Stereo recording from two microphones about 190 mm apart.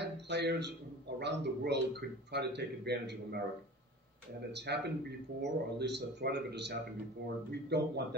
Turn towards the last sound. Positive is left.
turn(degrees=-60)  # may be behind; listen again after turning